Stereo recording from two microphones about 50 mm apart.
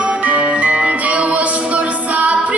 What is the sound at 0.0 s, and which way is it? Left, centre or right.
Music, right.